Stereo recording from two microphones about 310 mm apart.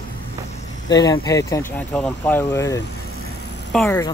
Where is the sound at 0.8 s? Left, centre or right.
Centre.